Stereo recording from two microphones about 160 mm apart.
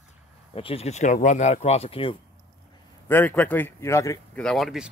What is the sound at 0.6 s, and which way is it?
Speech, 35° left (ahead or behind).